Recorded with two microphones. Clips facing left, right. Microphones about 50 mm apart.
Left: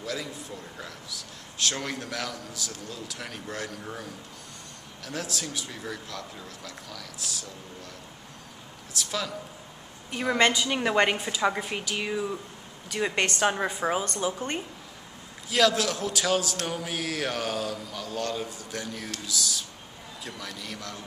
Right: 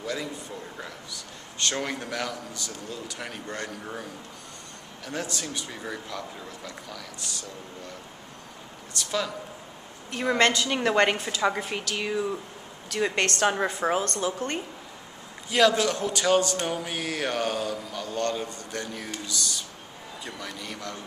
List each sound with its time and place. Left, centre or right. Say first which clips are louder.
0.0 s a man's voice: right 2 dB; centre
8.9 s a man's voice: right 2 dB; centre
15.5 s a man's voice: right 2 dB; centre